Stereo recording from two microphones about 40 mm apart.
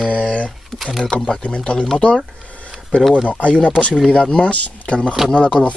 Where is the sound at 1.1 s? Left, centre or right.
Left.